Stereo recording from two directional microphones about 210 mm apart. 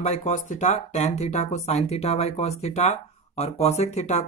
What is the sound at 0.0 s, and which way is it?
Speech, 30° left (ahead or behind).